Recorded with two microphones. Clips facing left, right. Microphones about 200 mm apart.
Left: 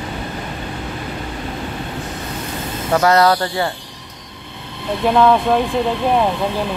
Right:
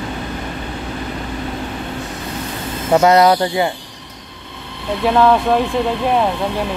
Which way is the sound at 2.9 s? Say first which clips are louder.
Right 3 dB; 20° right (ahead or behind).